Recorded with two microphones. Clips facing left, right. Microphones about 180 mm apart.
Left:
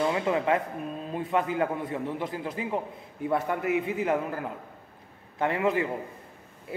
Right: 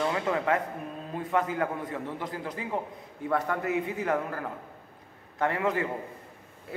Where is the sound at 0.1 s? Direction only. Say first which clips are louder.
Left 2 dB; 20° left (ahead or behind).